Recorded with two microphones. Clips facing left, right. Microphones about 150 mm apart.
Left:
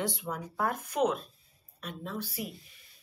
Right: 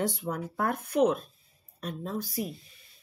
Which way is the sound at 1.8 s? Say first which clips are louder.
Right 4 dB; 40° right (ahead or behind).